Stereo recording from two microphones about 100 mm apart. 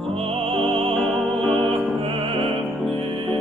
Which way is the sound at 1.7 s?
65° right (ahead or behind).